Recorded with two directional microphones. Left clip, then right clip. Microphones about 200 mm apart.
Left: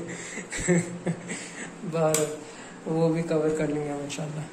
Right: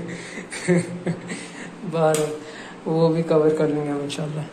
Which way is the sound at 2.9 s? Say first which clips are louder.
Right 6 dB; centre (ahead or behind).